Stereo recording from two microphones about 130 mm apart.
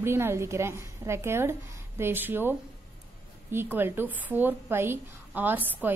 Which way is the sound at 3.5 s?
15° right (ahead or behind).